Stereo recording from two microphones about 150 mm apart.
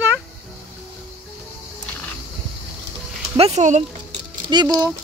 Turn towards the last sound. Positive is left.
turn(degrees=-25)  # may be behind; listen again after turning